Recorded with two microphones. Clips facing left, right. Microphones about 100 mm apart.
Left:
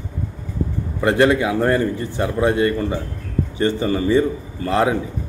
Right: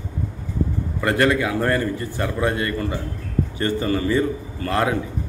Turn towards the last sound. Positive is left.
turn(degrees=20)  # may be behind; listen again after turning